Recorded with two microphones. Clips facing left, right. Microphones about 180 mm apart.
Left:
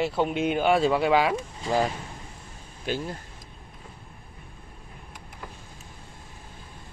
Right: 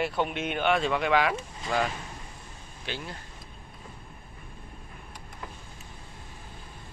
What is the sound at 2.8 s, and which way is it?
Speech, 45° left (ahead or behind).